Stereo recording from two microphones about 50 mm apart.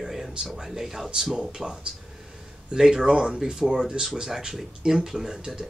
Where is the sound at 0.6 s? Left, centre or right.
Centre.